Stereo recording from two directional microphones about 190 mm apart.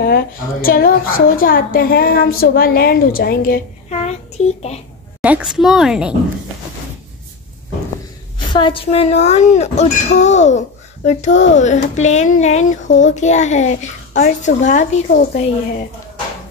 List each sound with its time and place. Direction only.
0.0 s a woman's voice: 50° left (ahead or behind)
3.9 s a child's voice: 35° left (ahead or behind)
5.2 s a woman's voice: 5° right (ahead or behind)
8.5 s speech: 25° left (ahead or behind); by 15.4 s 40° left (ahead or behind)